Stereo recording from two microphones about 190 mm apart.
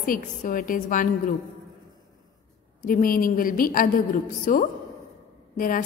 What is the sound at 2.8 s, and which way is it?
A woman's voice, 50° left (ahead or behind).